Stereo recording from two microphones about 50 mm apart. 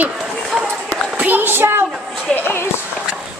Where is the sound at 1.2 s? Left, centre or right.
Right.